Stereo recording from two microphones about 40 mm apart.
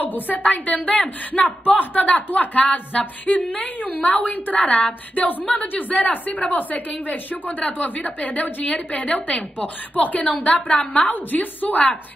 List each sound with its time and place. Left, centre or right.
0.0 s a woman's voice: left
10.5 s a woman's voice: left
10.9 s a woman's voice: left